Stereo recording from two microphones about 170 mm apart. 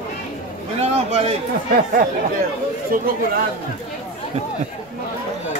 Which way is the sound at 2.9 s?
60° right (ahead or behind).